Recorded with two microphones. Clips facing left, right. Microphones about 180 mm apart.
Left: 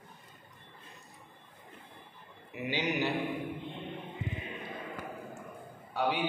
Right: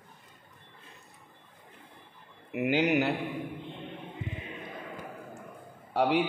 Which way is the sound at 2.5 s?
65° right (ahead or behind).